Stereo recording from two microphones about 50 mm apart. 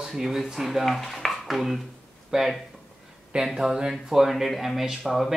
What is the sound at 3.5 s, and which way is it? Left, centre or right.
Speech, centre.